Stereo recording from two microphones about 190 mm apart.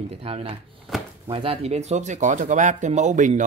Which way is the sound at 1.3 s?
30° right (ahead or behind).